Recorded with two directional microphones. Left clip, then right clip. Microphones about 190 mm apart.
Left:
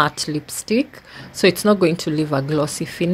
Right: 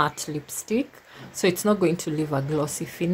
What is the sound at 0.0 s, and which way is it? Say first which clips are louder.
Speech: left 6 dB; 15° left (ahead or behind).